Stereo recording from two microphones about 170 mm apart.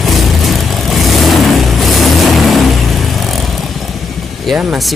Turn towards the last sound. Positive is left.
turn(degrees=-5)  # may be behind; listen again after turning